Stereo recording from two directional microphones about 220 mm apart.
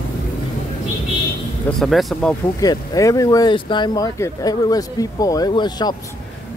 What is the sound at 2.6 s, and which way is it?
Speech, 15° left (ahead or behind).